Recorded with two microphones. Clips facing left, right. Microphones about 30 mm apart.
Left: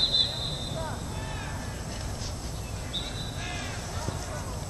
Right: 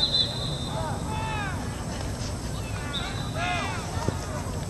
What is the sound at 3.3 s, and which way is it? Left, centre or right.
Vehicle, right.